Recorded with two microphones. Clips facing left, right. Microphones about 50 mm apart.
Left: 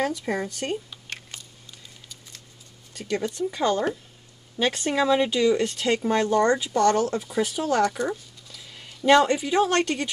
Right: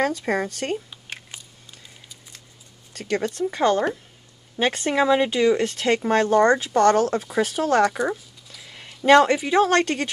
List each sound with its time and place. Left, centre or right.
0.0 s speech: right
0.8 s camera: centre
2.9 s speech: right